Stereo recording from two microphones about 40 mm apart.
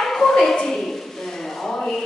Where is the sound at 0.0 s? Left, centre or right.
Centre.